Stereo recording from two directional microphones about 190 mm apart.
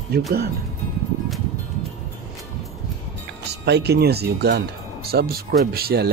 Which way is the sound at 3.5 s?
60° right (ahead or behind).